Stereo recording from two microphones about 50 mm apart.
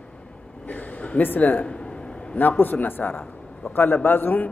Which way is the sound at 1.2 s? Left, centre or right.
Left.